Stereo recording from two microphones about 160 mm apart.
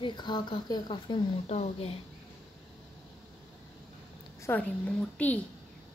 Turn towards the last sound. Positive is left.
turn(degrees=10)  # may be behind; listen again after turning